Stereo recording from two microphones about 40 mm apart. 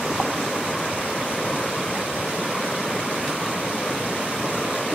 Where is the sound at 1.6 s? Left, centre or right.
Centre.